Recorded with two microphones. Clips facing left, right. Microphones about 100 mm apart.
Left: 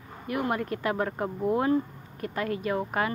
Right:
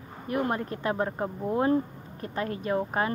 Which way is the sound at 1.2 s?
5° left (ahead or behind).